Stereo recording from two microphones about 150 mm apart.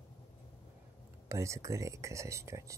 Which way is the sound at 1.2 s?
20° right (ahead or behind).